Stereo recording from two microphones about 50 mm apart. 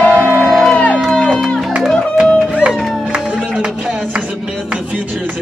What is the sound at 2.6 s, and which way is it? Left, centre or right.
Music, right.